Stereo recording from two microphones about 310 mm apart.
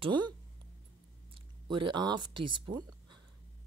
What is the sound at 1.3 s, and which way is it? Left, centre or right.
Speech, centre.